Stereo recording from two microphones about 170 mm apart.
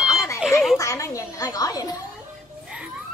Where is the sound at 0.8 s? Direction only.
20° left (ahead or behind).